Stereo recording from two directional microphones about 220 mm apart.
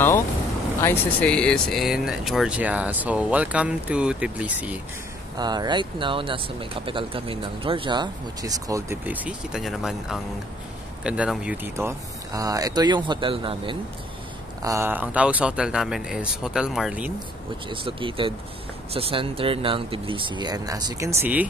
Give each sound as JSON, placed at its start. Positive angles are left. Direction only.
{"t": 0.8, "sound": "speech", "side_deg": 5}
{"t": 5.4, "sound": "speech", "side_deg": -20}
{"t": 14.6, "sound": "speech", "side_deg": -15}
{"t": 17.6, "sound": "speech", "side_deg": -25}